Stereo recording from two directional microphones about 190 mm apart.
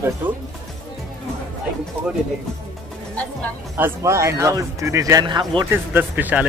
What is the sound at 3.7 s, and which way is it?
Speech, 15° right (ahead or behind).